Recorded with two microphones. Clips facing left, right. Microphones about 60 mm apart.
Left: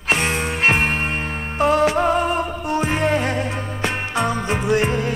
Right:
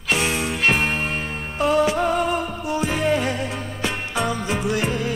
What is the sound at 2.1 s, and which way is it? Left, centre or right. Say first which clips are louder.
Music: left 2 dB; left.